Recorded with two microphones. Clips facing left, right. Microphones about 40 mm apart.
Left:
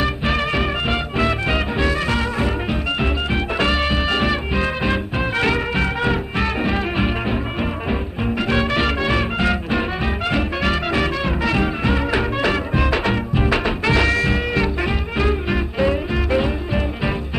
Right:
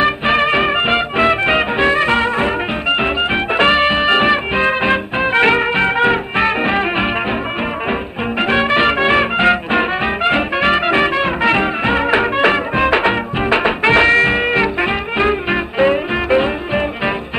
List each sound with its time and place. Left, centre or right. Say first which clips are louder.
0.0 s music: right 7 dB; right